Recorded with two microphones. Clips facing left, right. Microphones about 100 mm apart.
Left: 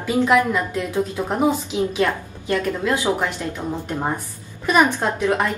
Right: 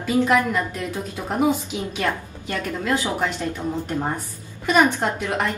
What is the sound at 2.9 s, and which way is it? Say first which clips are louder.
Speech: even; 15° left (ahead or behind).